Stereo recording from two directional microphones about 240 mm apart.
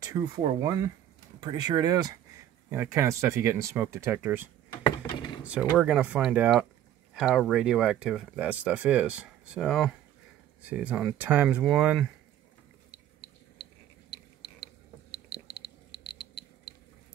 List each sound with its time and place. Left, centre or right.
0.0 s speech: centre
4.8 s a sound: centre
5.4 s speech: centre
14.1 s mechanisms: centre